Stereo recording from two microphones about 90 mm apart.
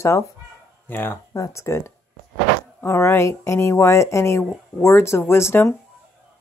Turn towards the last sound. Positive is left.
turn(degrees=30)  # may be behind; listen again after turning